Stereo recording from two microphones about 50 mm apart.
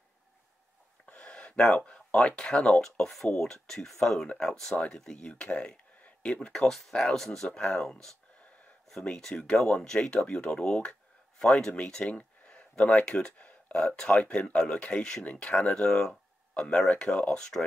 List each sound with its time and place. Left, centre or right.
1.0 s speech: left
5.2 s speech: left
6.5 s speech: centre
15.8 s speech: centre